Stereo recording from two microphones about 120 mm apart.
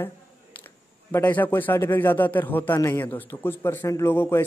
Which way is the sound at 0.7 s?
15° left (ahead or behind).